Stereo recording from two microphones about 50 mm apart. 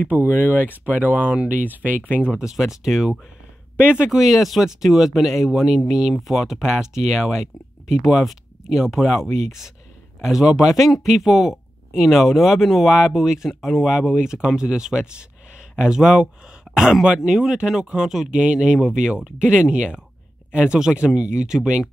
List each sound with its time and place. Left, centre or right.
0.1 s speech: right
2.3 s speech: centre
3.7 s speech: right
4.1 s speech: centre
10.2 s speech: centre